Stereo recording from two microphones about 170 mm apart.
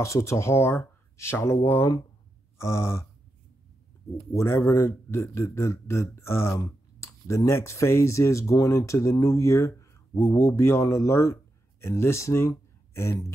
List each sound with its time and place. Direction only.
0.0 s a man's voice: 20° left (ahead or behind)
4.3 s a man's voice: 15° left (ahead or behind)